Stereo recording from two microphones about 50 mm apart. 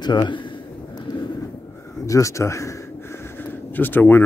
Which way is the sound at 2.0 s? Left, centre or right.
Left.